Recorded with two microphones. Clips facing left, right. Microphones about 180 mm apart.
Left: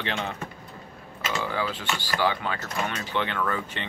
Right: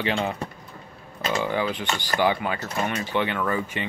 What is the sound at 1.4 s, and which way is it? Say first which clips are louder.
Speech: right 3 dB; 20° right (ahead or behind).